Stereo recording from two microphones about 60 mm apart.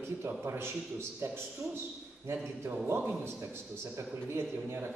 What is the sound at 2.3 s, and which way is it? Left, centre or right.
A man's voice, right.